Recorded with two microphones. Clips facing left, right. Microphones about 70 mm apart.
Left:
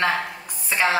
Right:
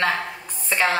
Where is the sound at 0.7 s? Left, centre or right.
Centre.